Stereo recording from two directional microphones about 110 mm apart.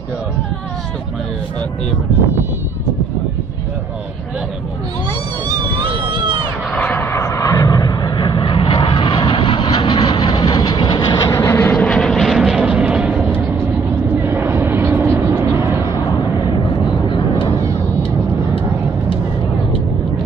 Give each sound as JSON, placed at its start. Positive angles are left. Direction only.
{"t": 6.7, "sound": "vehicle", "side_deg": 15}
{"t": 11.7, "sound": "vehicle", "side_deg": 5}
{"t": 14.2, "sound": "vehicle", "side_deg": -20}
{"t": 17.1, "sound": "vehicle", "side_deg": 55}